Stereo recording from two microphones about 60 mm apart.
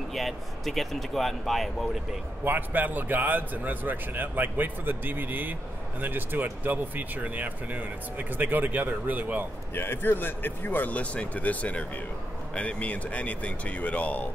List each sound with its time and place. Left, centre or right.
0.1 s speech: centre
2.4 s a man's voice: right
9.8 s speech: left